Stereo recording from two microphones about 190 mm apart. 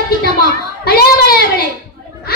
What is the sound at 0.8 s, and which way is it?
Child singing, 55° left (ahead or behind).